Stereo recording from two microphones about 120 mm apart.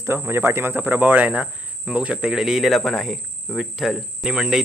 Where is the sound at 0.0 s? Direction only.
20° right (ahead or behind).